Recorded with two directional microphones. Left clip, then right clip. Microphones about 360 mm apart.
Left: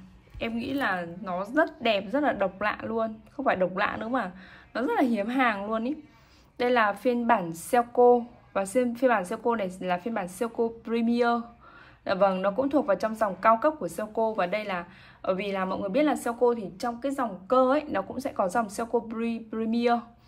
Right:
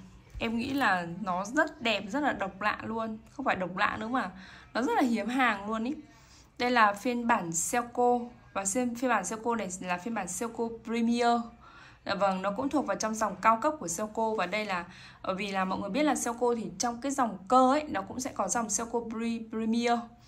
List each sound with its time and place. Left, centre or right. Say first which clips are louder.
0.4 s speech: even; centre